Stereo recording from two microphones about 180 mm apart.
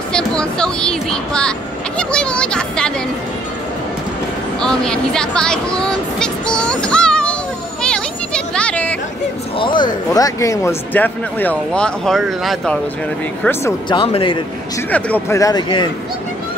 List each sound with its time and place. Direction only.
0.1 s speech: 5° left (ahead or behind)
4.6 s speech: 5° left (ahead or behind)
7.8 s a sound: 5° left (ahead or behind)
9.6 s speech: 25° left (ahead or behind); by 12.7 s centre (ahead or behind)
13.4 s speech: 10° left (ahead or behind)
13.8 s speech: 30° left (ahead or behind)
14.9 s speech: 10° left (ahead or behind); by 15.9 s 25° left (ahead or behind)